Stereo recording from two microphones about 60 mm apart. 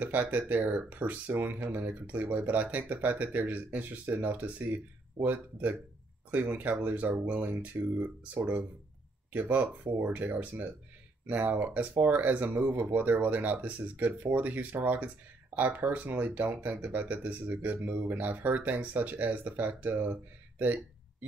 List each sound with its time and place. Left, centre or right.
0.0 s speech: right